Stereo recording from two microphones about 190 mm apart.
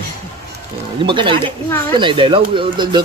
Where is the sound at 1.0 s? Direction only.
25° right (ahead or behind).